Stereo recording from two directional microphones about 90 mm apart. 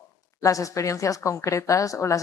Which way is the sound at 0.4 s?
35° left (ahead or behind).